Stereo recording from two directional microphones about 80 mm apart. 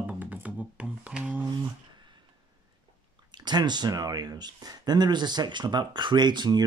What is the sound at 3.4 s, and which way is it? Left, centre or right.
Speech, right.